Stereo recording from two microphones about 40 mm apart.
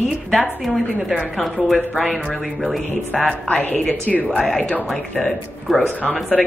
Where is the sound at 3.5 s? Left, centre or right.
Left.